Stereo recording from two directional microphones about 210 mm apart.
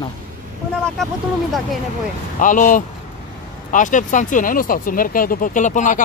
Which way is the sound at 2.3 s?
40° left (ahead or behind).